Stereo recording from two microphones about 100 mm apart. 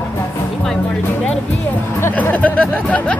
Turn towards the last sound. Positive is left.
turn(degrees=15)  # may be behind; listen again after turning